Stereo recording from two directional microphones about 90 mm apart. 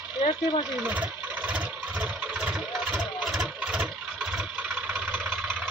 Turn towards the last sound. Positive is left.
turn(degrees=-5)  # may be behind; listen again after turning